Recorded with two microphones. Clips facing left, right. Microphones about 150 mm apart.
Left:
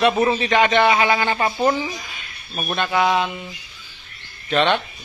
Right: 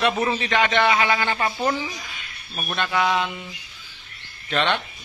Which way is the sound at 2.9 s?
25° left (ahead or behind).